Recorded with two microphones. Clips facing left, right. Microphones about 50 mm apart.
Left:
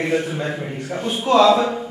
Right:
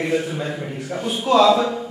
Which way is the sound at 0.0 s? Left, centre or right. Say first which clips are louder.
Left 1 dB; centre.